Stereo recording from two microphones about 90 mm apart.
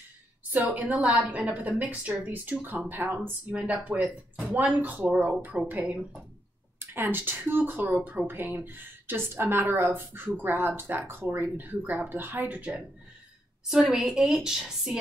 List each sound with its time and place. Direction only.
0.5 s speech: 10° right (ahead or behind)
6.8 s a woman's voice: 25° right (ahead or behind); by 15.0 s 5° right (ahead or behind)